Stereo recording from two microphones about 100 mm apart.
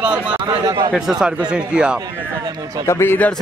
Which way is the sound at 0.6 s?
40° right (ahead or behind).